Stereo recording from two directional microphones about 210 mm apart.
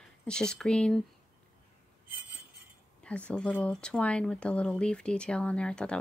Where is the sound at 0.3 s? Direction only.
5° left (ahead or behind).